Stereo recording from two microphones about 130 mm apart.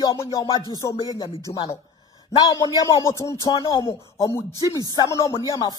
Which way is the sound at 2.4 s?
30° left (ahead or behind).